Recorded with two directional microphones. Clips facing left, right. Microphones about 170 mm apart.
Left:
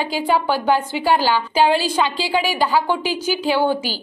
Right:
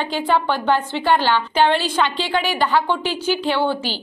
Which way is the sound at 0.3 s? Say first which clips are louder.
Left 1 dB; 10° left (ahead or behind).